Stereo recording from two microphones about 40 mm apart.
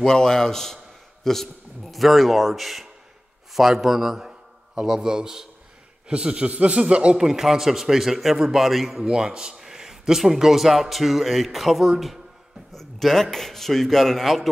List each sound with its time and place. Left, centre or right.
0.0 s a man's voice: centre; by 7.2 s right
7.2 s speech: centre
9.0 s a man's voice: centre